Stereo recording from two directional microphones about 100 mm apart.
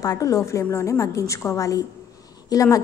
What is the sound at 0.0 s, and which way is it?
A woman's voice, 35° left (ahead or behind).